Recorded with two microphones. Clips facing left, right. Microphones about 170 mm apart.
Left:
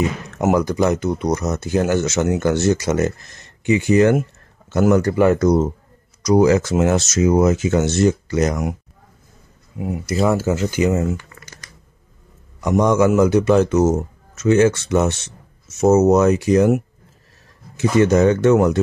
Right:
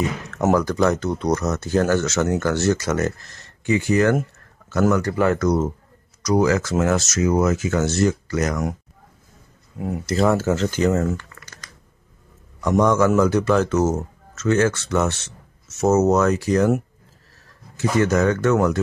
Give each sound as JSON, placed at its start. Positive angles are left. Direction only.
{"t": 0.3, "sound": "speech", "side_deg": 15}
{"t": 9.8, "sound": "speech", "side_deg": 5}
{"t": 12.5, "sound": "speech", "side_deg": 15}